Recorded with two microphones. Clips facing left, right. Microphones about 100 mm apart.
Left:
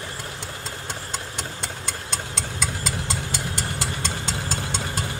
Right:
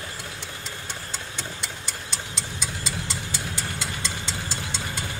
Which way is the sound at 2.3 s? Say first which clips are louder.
Left 4 dB; 45° left (ahead or behind).